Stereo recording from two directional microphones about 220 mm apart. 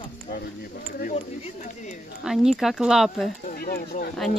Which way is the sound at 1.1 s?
30° left (ahead or behind).